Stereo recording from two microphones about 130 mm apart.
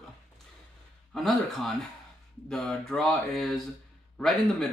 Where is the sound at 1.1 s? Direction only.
Centre (ahead or behind).